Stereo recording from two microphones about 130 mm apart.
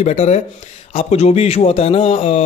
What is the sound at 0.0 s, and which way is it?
Speech, 60° left (ahead or behind).